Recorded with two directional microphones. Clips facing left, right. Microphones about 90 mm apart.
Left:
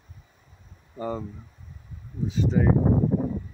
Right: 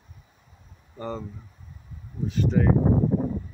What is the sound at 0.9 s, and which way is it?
Speech, 10° left (ahead or behind).